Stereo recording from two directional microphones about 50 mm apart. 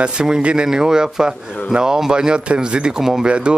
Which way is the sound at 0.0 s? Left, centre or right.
Centre.